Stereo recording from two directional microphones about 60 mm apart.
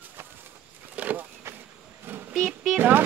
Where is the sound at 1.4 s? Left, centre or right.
Right.